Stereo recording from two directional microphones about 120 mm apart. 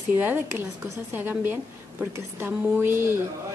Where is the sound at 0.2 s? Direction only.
15° right (ahead or behind).